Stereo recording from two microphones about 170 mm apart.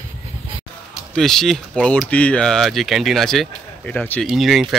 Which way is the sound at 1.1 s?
5° left (ahead or behind).